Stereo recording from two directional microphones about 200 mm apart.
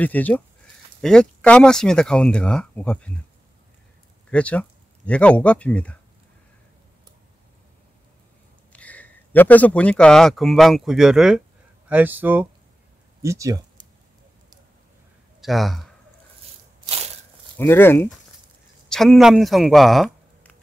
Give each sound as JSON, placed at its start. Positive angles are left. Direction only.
{"t": 0.0, "sound": "speech", "side_deg": 10}
{"t": 4.3, "sound": "speech", "side_deg": 5}
{"t": 8.7, "sound": "speech", "side_deg": 5}
{"t": 15.4, "sound": "speech", "side_deg": 0}
{"t": 16.8, "sound": "crushing", "side_deg": -30}
{"t": 17.6, "sound": "speech", "side_deg": 10}
{"t": 18.9, "sound": "speech", "side_deg": 0}